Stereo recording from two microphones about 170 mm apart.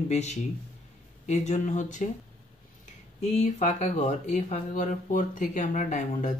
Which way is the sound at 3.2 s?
40° left (ahead or behind).